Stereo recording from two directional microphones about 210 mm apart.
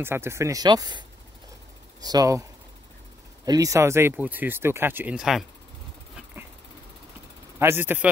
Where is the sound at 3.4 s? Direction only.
15° right (ahead or behind).